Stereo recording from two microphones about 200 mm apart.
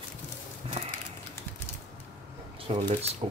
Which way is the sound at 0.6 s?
30° right (ahead or behind).